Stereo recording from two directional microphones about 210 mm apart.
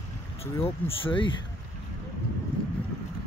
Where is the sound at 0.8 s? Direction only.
25° left (ahead or behind).